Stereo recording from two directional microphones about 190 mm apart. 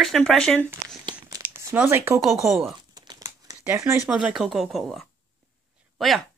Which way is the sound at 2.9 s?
20° right (ahead or behind).